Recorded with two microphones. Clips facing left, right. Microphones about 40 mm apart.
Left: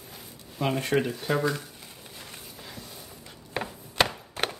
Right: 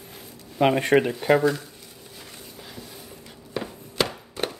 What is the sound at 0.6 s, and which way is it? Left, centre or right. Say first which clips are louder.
Speech: right 7 dB; right.